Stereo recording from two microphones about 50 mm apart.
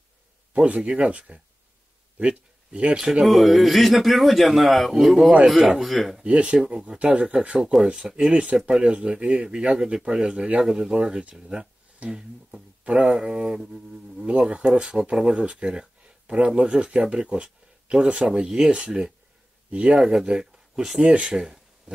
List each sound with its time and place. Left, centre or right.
0.5 s speech: right
3.3 s speech: centre
6.2 s speech: right
13.6 s a sound: centre
14.2 s speech: right
21.3 s speech: centre